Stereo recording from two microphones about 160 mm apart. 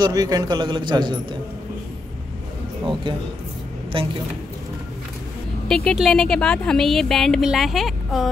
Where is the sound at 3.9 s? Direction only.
35° right (ahead or behind).